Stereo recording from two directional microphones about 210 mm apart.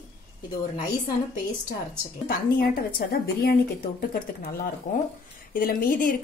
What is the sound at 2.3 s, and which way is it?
A woman's voice, 45° left (ahead or behind).